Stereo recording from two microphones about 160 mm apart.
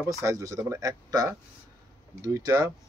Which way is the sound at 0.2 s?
20° right (ahead or behind).